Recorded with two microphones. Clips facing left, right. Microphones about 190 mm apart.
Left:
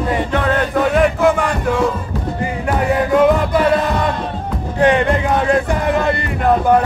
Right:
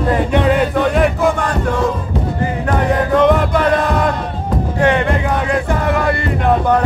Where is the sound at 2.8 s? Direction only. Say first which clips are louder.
Even; 10° left (ahead or behind).